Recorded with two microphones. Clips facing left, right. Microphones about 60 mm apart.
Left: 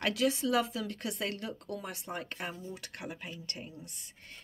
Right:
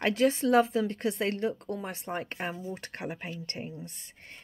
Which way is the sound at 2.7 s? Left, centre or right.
Right.